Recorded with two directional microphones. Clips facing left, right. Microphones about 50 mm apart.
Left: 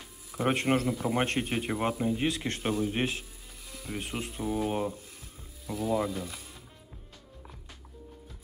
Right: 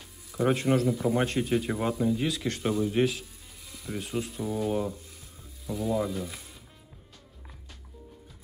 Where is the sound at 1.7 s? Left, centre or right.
Left.